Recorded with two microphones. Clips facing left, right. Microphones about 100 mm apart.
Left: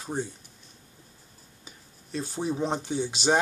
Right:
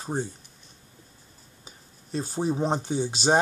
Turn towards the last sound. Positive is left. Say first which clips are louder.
# right 2 dB
turn(degrees=-35)  # may be behind; listen again after turning